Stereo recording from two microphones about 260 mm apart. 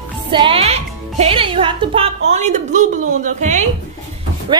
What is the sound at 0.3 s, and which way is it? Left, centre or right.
Speech, centre.